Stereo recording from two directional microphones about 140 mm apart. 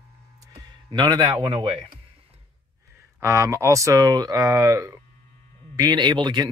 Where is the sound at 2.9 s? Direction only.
20° right (ahead or behind).